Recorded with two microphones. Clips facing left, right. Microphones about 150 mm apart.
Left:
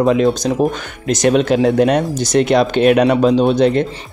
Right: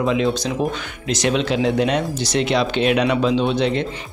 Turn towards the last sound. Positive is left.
turn(degrees=45)  # may be behind; listen again after turning